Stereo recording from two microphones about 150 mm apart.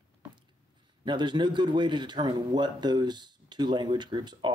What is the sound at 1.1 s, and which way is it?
Speech, 30° right (ahead or behind).